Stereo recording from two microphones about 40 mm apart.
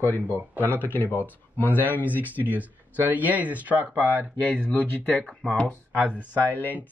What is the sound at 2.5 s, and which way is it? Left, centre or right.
Speech, right.